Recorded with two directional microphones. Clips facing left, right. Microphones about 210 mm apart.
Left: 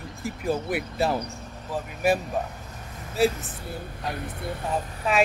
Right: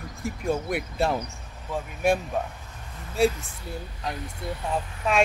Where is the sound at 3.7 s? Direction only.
55° left (ahead or behind).